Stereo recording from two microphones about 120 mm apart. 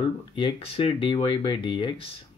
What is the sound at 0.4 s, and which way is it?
Speech, 45° left (ahead or behind).